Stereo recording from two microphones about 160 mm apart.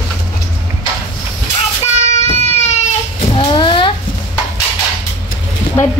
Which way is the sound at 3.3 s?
30° left (ahead or behind).